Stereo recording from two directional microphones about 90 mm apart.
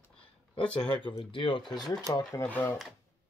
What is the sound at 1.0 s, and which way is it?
Speech, 70° left (ahead or behind).